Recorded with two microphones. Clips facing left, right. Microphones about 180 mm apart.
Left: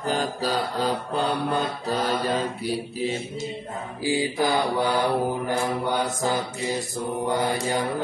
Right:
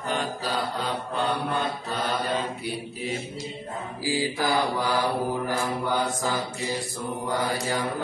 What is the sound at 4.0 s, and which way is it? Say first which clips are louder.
Mantra: left 3 dB; 20° left (ahead or behind).